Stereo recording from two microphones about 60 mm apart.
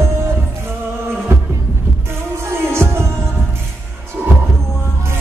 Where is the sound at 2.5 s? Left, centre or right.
Right.